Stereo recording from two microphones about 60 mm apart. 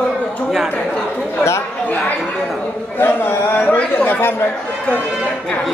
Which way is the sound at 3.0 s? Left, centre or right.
Left.